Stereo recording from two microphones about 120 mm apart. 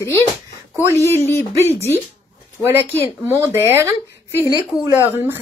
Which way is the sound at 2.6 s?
20° right (ahead or behind).